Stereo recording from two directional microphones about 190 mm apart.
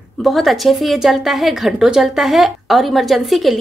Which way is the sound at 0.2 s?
Centre (ahead or behind).